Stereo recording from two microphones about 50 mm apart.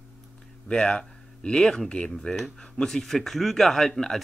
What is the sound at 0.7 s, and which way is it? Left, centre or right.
Speech, centre.